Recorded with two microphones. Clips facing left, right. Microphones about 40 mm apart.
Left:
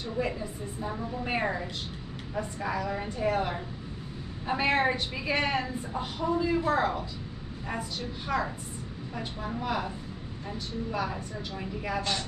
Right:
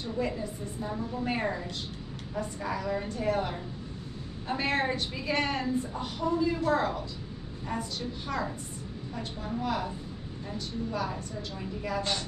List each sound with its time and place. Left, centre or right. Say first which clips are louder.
0.2 s a woman's voice: even; centre
8.3 s a woman's voice: left 5 dB; centre